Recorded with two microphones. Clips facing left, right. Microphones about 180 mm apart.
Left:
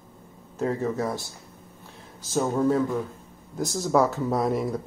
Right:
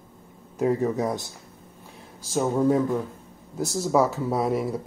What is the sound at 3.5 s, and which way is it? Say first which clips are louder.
Speech: even; 5° right (ahead or behind).